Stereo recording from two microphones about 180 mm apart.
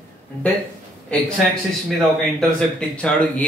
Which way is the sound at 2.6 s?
5° left (ahead or behind).